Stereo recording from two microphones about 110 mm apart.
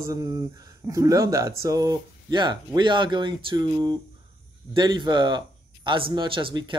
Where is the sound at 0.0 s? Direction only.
30° right (ahead or behind).